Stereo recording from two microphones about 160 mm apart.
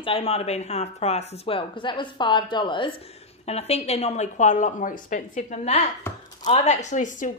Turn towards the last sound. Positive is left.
turn(degrees=55)  # may be behind; listen again after turning